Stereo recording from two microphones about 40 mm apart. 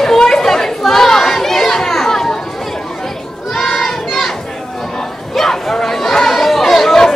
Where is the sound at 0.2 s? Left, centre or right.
Centre.